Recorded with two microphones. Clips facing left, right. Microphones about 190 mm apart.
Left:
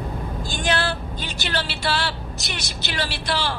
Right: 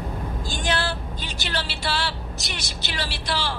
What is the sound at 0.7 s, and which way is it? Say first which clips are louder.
Speech: left 3 dB; 60° left (ahead or behind).